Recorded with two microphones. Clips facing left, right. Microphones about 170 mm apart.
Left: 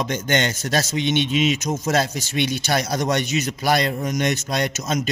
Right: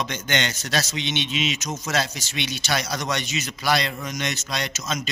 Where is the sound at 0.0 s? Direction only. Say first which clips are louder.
Left 5 dB; 45° left (ahead or behind).